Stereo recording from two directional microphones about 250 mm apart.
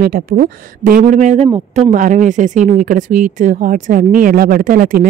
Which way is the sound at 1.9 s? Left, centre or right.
Right.